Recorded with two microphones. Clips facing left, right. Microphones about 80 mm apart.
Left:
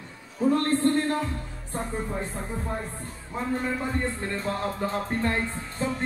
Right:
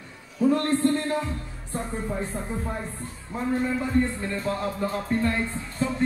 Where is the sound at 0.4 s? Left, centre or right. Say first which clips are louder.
Right 2 dB; left.